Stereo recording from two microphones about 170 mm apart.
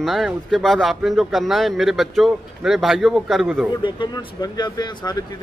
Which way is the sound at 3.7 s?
25° left (ahead or behind).